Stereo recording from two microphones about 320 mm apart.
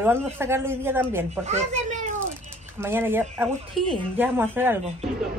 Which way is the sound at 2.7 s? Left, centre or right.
Centre.